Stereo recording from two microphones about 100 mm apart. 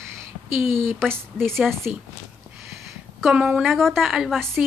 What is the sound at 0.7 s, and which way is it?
Speech, 25° right (ahead or behind).